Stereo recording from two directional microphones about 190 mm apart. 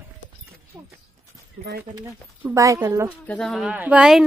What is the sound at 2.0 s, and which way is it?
Speech, 15° right (ahead or behind).